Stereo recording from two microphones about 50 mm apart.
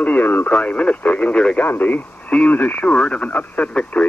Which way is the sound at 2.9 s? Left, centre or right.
Left.